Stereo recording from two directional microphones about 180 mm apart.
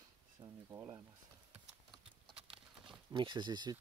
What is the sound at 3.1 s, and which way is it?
Speech, 25° right (ahead or behind).